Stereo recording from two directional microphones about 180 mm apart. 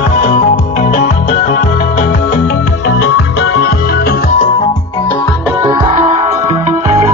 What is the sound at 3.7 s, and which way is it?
Music, 60° left (ahead or behind).